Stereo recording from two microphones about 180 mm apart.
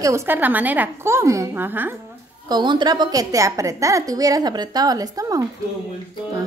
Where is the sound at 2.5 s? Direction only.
25° right (ahead or behind).